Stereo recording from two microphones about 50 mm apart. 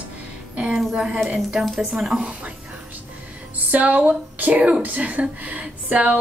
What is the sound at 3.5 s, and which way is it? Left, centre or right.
Speech, right.